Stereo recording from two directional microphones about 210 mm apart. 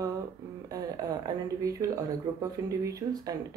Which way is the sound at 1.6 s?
15° right (ahead or behind).